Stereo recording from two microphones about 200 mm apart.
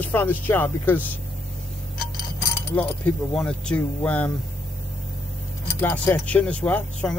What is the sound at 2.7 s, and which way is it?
Speech, 5° left (ahead or behind).